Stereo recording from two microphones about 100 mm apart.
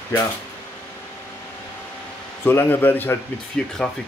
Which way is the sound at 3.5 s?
5° left (ahead or behind).